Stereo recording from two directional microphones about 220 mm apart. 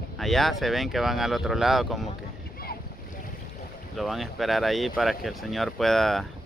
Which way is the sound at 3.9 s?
Centre (ahead or behind).